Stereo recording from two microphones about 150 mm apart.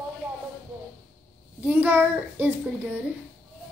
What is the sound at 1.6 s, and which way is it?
Speech, 10° right (ahead or behind).